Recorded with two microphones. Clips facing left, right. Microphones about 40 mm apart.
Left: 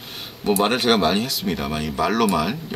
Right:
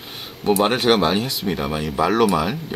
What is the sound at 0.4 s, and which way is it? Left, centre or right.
Speech, centre.